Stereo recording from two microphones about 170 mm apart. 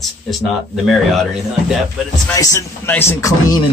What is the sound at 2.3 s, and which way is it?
Speech, 20° left (ahead or behind).